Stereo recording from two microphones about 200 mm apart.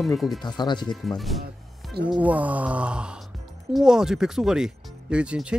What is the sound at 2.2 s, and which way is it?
Groan, 5° right (ahead or behind).